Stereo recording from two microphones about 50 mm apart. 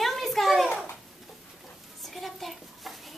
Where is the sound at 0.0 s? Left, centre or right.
Centre.